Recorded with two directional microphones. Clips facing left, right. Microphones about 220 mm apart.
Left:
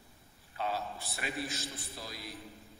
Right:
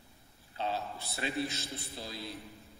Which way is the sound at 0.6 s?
25° right (ahead or behind).